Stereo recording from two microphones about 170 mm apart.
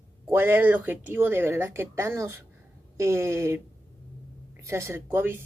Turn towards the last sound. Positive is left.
turn(degrees=-15)  # may be behind; listen again after turning